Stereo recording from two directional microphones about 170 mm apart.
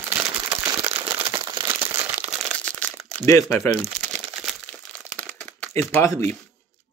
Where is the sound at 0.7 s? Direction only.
35° right (ahead or behind).